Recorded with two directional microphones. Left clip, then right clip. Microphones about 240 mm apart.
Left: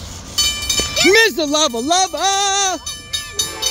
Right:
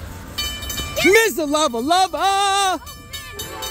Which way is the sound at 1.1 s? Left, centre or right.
Centre.